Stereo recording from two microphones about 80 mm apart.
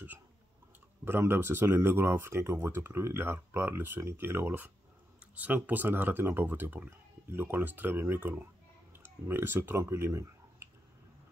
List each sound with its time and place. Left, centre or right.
1.0 s speech: right